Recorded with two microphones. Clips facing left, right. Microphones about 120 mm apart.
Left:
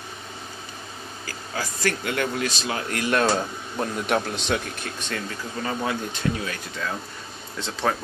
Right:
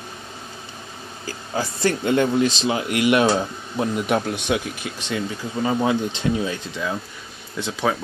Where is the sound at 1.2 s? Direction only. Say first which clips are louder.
Right 6 dB; 25° right (ahead or behind).